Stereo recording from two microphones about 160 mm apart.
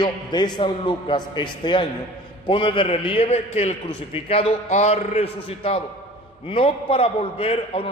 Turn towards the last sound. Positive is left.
turn(degrees=35)  # may be behind; listen again after turning